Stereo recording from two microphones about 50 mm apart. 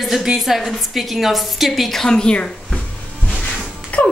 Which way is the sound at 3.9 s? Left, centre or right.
Left.